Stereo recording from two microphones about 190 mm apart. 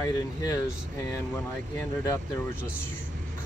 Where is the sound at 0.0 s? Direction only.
20° left (ahead or behind).